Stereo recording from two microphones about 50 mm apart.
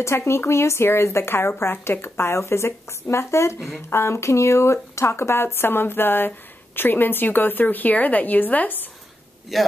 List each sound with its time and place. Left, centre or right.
0.0 s speech: left
9.5 s a man's voice: centre